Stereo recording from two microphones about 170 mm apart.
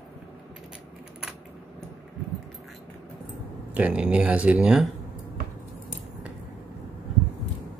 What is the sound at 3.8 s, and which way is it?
Speech, 10° right (ahead or behind).